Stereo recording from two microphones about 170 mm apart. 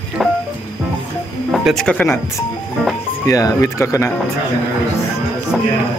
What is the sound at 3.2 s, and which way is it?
Speech, 20° left (ahead or behind).